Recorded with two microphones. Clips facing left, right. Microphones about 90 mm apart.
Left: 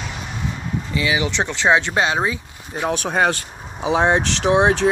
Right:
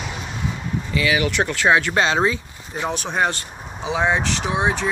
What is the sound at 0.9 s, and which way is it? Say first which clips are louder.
Speech: right 1 dB; 25° left (ahead or behind).